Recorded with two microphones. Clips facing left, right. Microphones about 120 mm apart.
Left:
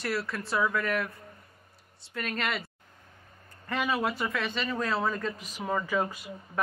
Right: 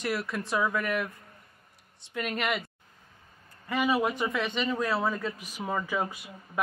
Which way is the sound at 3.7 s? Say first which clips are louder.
Right 3 dB; 10° right (ahead or behind).